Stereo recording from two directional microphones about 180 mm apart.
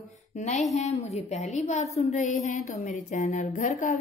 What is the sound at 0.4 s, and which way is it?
A woman's voice, 40° left (ahead or behind).